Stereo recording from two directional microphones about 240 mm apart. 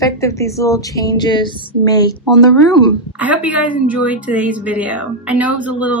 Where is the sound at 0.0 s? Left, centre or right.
Centre.